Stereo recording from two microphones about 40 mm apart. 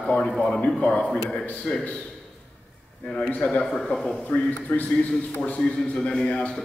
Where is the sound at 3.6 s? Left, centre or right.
Centre.